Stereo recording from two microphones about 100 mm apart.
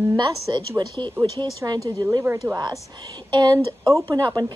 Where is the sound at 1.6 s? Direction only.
40° right (ahead or behind).